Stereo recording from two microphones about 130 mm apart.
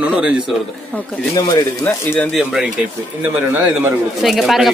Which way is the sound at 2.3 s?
Centre (ahead or behind).